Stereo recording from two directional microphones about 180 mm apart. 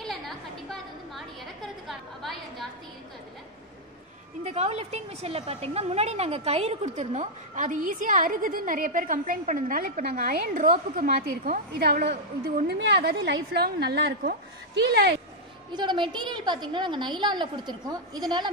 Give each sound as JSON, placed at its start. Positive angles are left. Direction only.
{"t": 0.7, "sound": "a sound", "side_deg": 0}
{"t": 4.5, "sound": "a woman's voice", "side_deg": -35}
{"t": 12.7, "sound": "a woman's voice", "side_deg": -70}
{"t": 15.7, "sound": "a woman's voice", "side_deg": -25}